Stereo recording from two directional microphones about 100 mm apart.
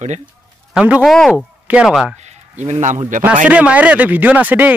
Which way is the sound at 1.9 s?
Centre (ahead or behind).